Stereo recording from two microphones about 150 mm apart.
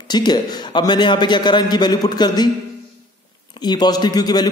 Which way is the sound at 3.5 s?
30° left (ahead or behind).